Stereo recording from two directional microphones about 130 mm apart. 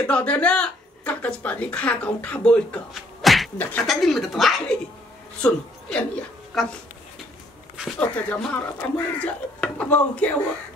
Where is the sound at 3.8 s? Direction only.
Centre (ahead or behind).